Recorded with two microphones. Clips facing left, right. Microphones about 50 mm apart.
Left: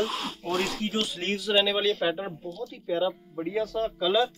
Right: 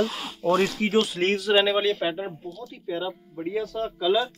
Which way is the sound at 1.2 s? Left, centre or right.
Right.